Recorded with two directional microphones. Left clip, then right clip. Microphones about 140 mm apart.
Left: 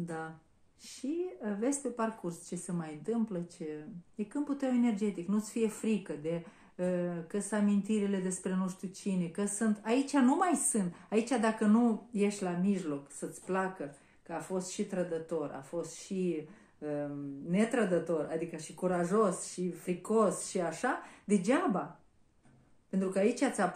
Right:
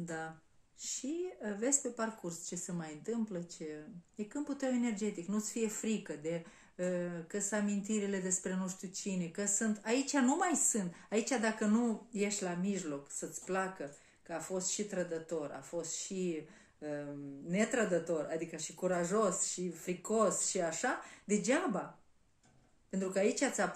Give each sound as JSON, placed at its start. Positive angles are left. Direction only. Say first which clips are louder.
{"t": 1.4, "sound": "speech", "louder": "left 2 dB", "side_deg": -25}
{"t": 22.8, "sound": "speech", "louder": "left 2 dB", "side_deg": -20}